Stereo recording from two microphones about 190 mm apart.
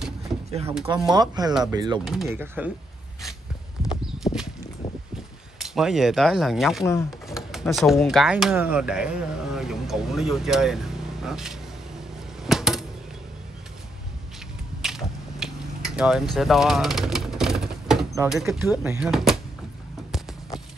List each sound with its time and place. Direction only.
0.8 s speech: 5° right (ahead or behind)
1.1 s speech: 20° right (ahead or behind)
3.8 s horse: centre (ahead or behind)
5.6 s speech: centre (ahead or behind)
6.8 s speech: 15° left (ahead or behind)
7.2 s speech: centre (ahead or behind)
12.4 s typewriter: centre (ahead or behind)
14.8 s mechanisms: centre (ahead or behind)
18.3 s speech: centre (ahead or behind)